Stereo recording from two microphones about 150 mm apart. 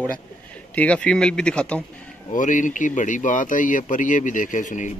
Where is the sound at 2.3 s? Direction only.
60° left (ahead or behind).